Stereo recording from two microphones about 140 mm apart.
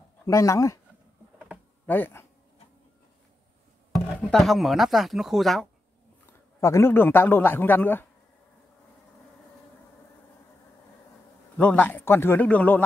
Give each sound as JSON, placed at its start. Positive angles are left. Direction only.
{"t": 0.3, "sound": "speech", "side_deg": 20}
{"t": 1.9, "sound": "a man's voice", "side_deg": 15}
{"t": 4.2, "sound": "speech", "side_deg": 0}
{"t": 6.6, "sound": "a man's voice", "side_deg": 20}
{"t": 11.5, "sound": "a man's voice", "side_deg": 10}